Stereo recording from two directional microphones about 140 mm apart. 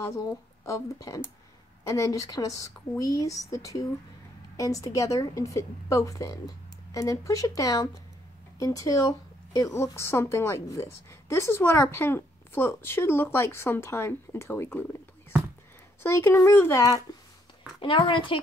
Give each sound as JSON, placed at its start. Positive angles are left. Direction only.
{"t": 0.7, "sound": "speech", "side_deg": 25}
{"t": 16.0, "sound": "a child's voice", "side_deg": 15}
{"t": 17.7, "sound": "a child's voice", "side_deg": 35}